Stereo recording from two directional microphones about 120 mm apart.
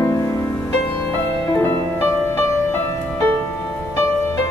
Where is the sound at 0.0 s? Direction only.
25° left (ahead or behind).